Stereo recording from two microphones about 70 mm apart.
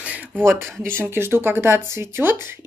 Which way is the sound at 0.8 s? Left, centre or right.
Right.